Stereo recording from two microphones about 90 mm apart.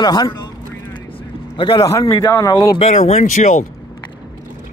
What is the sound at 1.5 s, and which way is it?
Speech, 70° left (ahead or behind).